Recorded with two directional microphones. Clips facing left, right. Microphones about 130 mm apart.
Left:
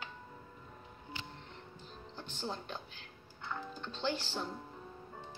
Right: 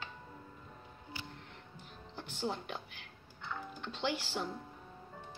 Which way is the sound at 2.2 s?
10° right (ahead or behind).